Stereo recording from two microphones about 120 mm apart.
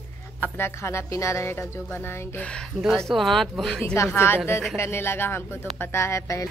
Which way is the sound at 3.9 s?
20° left (ahead or behind).